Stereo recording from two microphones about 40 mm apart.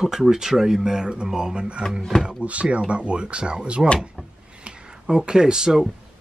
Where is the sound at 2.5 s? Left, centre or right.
Right; by 5.9 s centre.